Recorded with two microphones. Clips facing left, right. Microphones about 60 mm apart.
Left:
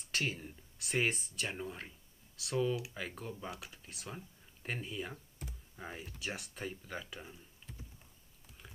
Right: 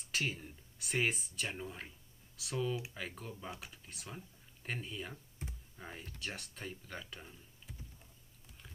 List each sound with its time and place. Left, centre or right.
0.1 s speech: centre